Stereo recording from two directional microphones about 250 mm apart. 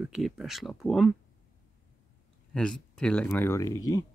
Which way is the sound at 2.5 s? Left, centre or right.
Centre.